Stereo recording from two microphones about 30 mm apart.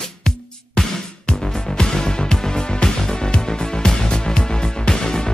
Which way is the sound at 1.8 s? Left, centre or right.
Left.